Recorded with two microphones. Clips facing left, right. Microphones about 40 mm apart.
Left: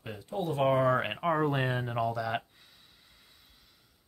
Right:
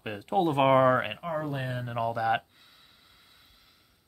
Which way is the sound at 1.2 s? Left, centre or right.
Left.